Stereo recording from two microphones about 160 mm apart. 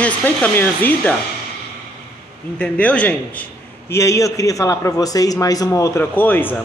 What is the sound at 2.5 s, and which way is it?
A man's voice, 10° left (ahead or behind).